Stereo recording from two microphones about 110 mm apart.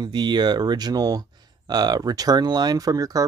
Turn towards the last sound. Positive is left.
turn(degrees=-35)  # may be behind; listen again after turning